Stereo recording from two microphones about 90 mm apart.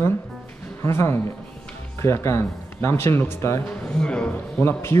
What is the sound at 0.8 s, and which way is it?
A man's voice, 30° left (ahead or behind).